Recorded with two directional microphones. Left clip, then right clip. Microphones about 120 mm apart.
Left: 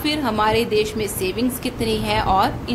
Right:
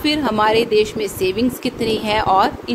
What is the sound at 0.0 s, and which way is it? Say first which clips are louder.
A woman's voice: right 3 dB; 45° right (ahead or behind).